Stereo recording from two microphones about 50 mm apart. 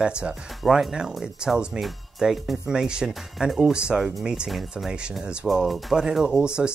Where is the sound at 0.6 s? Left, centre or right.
Centre.